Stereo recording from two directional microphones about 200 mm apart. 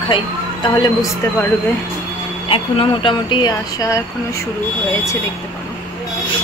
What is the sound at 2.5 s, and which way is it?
Speech, 25° left (ahead or behind).